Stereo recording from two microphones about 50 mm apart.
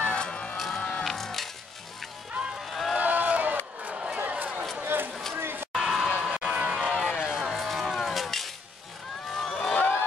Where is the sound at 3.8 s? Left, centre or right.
Right.